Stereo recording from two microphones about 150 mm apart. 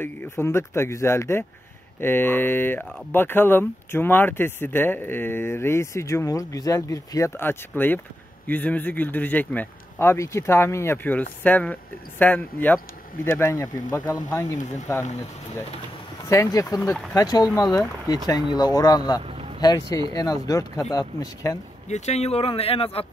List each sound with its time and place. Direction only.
0.0 s speech: 15° left (ahead or behind)
16.3 s speech: 20° left (ahead or behind)
19.2 s vehicle: 40° right (ahead or behind)
20.1 s speech: 25° left (ahead or behind)
21.8 s speech: 50° left (ahead or behind)